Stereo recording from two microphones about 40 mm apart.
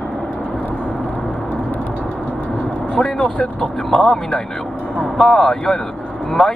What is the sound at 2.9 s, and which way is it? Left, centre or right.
Speech, left.